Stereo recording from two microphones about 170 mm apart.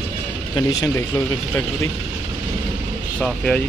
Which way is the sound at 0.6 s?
20° left (ahead or behind).